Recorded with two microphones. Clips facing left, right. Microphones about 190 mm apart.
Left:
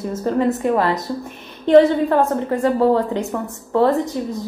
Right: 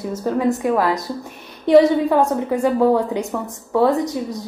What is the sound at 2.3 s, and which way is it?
A woman's voice, 5° right (ahead or behind).